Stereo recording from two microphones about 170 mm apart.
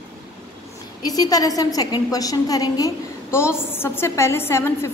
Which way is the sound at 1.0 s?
20° left (ahead or behind).